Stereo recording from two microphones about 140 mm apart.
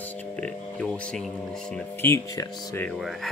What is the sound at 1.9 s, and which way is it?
Speech, 20° left (ahead or behind).